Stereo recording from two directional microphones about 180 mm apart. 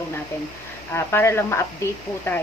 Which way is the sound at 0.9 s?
15° left (ahead or behind).